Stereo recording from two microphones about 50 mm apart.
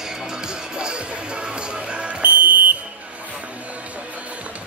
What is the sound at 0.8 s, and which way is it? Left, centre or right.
Music, centre.